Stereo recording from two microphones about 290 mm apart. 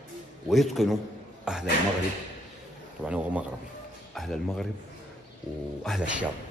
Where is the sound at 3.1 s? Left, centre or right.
Centre.